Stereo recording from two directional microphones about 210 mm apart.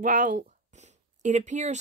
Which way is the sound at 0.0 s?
35° right (ahead or behind).